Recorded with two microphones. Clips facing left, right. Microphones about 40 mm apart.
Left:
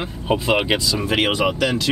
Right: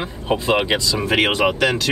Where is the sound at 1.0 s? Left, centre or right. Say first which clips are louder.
Right 2 dB; right.